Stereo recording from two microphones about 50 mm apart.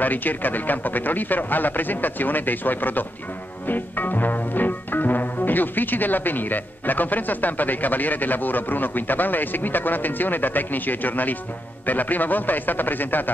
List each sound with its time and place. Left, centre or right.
0.0 s music: left